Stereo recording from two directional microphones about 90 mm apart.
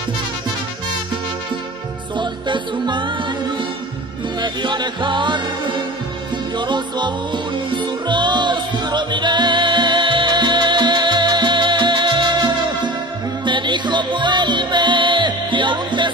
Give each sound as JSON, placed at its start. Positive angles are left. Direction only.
{"t": 2.1, "sound": "music", "side_deg": -60}